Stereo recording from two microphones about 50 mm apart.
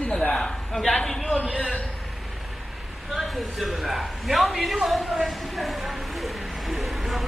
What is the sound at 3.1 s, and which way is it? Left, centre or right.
A man's voice, centre.